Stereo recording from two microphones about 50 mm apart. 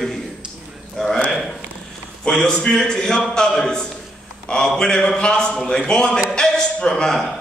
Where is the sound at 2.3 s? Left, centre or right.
Centre.